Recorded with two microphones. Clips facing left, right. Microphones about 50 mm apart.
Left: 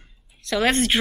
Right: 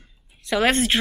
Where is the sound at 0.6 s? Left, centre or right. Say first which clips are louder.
Even; centre.